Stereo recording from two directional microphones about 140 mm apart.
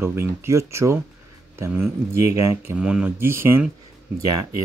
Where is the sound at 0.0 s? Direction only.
15° right (ahead or behind).